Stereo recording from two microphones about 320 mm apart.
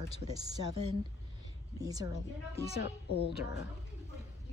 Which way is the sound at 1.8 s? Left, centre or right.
Centre.